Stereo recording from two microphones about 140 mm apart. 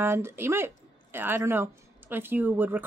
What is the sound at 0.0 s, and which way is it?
Speech, 15° right (ahead or behind).